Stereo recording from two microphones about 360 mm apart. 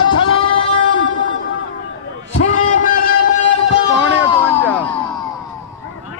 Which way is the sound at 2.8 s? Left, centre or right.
Left.